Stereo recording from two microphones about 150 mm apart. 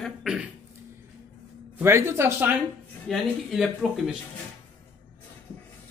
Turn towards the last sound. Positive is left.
turn(degrees=0)  # may be behind; listen again after turning